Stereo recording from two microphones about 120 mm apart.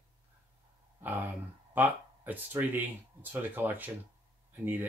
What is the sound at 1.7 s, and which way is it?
Speech, 15° right (ahead or behind).